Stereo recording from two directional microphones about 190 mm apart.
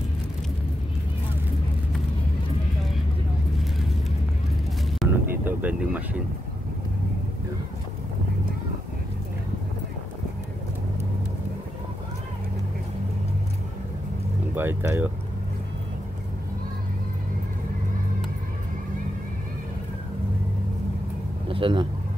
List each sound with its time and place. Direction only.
5.0 s vehicle: 10° right (ahead or behind)
14.5 s speech: 10° right (ahead or behind)
21.5 s a man's voice: 25° right (ahead or behind)